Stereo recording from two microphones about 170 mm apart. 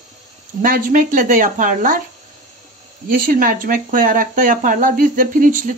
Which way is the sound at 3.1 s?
55° right (ahead or behind).